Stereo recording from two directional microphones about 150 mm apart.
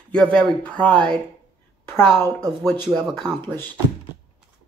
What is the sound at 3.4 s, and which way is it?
Speech, 15° left (ahead or behind).